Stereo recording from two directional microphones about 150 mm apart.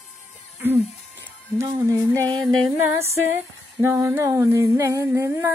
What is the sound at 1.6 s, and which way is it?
Female singing, 20° right (ahead or behind).